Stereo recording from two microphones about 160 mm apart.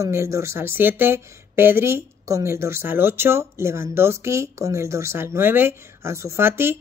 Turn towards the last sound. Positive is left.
turn(degrees=-15)  # may be behind; listen again after turning